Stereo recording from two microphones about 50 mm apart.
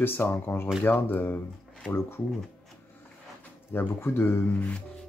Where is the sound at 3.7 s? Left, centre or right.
Left.